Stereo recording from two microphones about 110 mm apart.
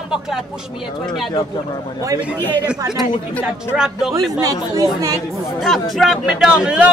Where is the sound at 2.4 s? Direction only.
20° left (ahead or behind).